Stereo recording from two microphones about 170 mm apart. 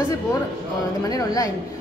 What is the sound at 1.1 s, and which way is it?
Speech, 20° left (ahead or behind).